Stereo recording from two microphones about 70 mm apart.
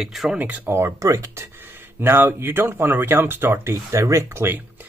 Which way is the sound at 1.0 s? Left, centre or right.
Right.